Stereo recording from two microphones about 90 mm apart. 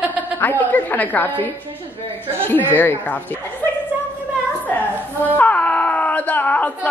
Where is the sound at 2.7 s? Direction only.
20° left (ahead or behind).